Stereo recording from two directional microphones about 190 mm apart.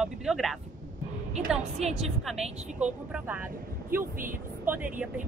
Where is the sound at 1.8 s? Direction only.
35° right (ahead or behind).